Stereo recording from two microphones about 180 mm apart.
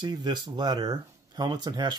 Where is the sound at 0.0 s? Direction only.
25° right (ahead or behind).